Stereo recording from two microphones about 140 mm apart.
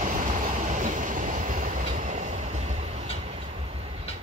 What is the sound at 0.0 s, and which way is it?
Train, 65° right (ahead or behind).